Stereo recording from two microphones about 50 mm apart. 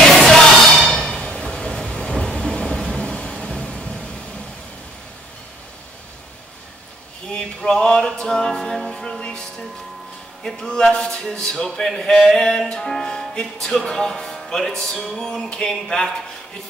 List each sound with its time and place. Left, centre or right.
0.1 s music: centre
1.1 s train: left
7.3 s music: centre